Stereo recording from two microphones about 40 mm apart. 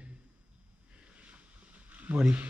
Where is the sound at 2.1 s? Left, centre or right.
Right.